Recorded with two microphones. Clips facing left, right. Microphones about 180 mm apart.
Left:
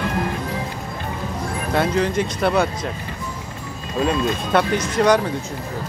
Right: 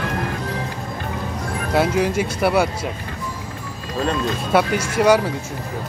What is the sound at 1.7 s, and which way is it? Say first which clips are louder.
Speech: right 1 dB; 10° right (ahead or behind).